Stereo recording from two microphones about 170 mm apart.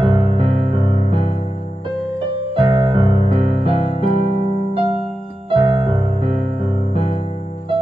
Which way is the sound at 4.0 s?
45° left (ahead or behind).